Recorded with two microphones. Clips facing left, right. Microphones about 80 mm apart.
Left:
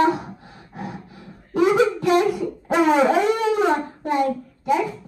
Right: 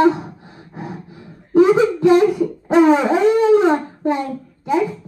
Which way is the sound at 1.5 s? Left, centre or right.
Right.